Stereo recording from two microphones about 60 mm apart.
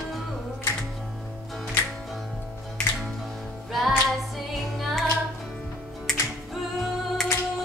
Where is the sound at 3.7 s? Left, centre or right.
Centre.